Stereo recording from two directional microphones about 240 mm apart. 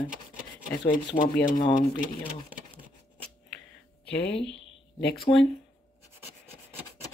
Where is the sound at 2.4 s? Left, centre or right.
Right.